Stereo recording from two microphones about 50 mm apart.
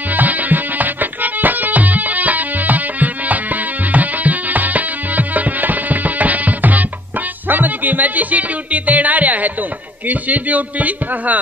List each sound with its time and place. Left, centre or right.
0.1 s music: right
10.0 s a man's voice: right